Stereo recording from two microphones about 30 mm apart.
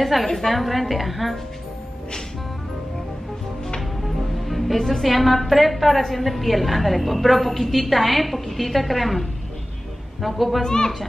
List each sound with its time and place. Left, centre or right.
0.0 s a woman's voice: centre
4.0 s a woman's voice: centre
10.2 s a woman's voice: centre
10.6 s speech: left